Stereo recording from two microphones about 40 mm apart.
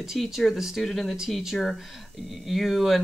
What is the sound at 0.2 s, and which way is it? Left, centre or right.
Speech, centre.